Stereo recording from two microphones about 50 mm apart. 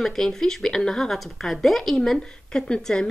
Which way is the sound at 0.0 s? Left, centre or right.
Centre.